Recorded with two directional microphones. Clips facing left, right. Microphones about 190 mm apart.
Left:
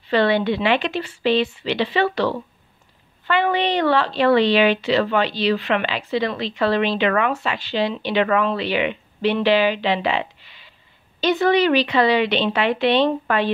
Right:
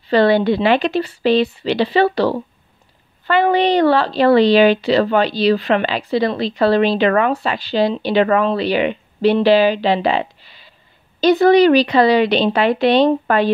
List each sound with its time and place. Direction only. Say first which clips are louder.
0.1 s speech: right 5 dB; 40° right (ahead or behind)